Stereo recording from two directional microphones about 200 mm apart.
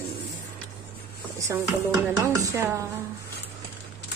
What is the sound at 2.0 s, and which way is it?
Speech, 15° right (ahead or behind).